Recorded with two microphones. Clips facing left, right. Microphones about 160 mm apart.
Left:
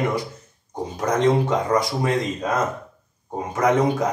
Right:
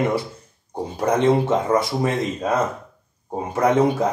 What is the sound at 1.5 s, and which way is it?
Speech, 25° right (ahead or behind).